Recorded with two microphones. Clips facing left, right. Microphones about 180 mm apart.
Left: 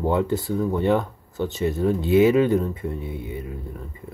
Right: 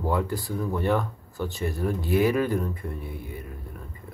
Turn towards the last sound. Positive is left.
turn(degrees=25)  # may be behind; listen again after turning